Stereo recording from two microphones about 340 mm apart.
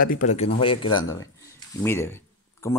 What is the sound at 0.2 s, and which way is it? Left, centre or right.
Speech, centre.